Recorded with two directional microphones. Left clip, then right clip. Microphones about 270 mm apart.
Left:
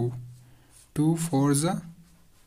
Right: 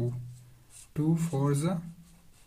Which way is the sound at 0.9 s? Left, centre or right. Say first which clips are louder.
Left 6 dB; left.